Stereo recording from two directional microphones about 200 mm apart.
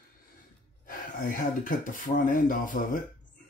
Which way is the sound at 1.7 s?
40° left (ahead or behind).